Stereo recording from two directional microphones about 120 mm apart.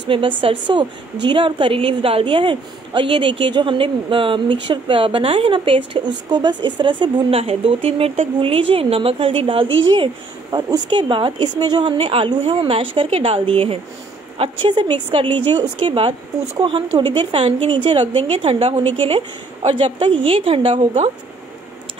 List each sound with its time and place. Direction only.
0.1 s a woman's voice: 45° right (ahead or behind)
14.4 s a woman's voice: 40° right (ahead or behind)
15.2 s a woman's voice: 15° left (ahead or behind)
15.8 s a woman's voice: 50° right (ahead or behind)
17.2 s a woman's voice: 45° right (ahead or behind)